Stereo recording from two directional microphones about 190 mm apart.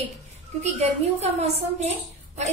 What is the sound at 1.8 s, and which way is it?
Speech, 35° right (ahead or behind).